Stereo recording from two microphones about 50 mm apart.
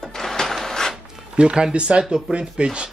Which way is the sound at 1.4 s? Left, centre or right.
Right.